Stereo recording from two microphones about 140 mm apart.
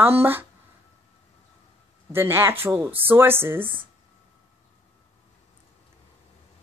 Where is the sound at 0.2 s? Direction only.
15° right (ahead or behind).